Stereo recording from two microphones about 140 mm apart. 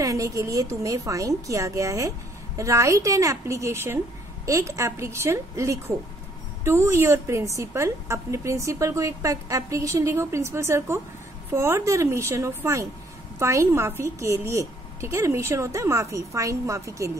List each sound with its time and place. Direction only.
0.0 s a woman's voice: 25° right (ahead or behind)